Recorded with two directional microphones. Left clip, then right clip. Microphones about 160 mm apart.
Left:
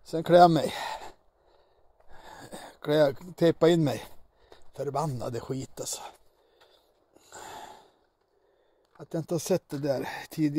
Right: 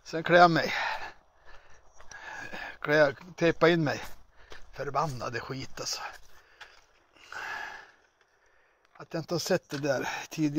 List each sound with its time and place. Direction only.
0.0 s gasp: 35° left (ahead or behind)
2.1 s a sound: 30° left (ahead or behind)
4.6 s speech: 40° left (ahead or behind)
7.2 s snort: 40° left (ahead or behind)
8.9 s speech: 40° left (ahead or behind)